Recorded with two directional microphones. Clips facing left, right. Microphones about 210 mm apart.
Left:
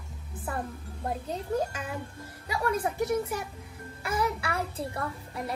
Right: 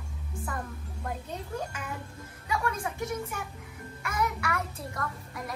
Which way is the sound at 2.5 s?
35° left (ahead or behind).